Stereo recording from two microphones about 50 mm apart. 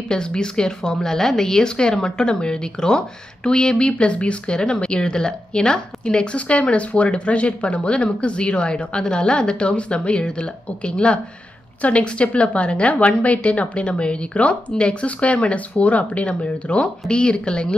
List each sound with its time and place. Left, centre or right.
0.1 s speech: centre